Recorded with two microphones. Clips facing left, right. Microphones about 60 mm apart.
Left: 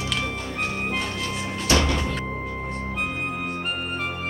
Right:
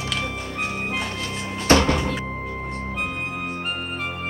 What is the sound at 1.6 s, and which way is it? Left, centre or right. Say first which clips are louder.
Music: right 5 dB; right.